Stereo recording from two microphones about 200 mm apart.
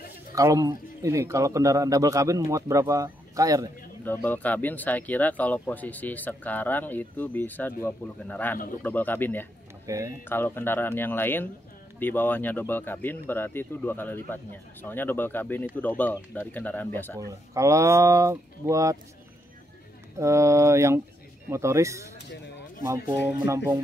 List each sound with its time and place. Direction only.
0.3 s a man's voice: 15° right (ahead or behind)
4.0 s speech: 10° left (ahead or behind)
9.8 s a man's voice: 15° right (ahead or behind)
10.2 s speech: 10° left (ahead or behind)
17.6 s a man's voice: 15° right (ahead or behind)
20.2 s a man's voice: 15° right (ahead or behind)
23.4 s a man's voice: 15° right (ahead or behind)